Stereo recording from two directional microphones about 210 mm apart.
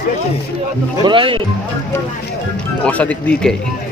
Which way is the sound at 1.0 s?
25° right (ahead or behind).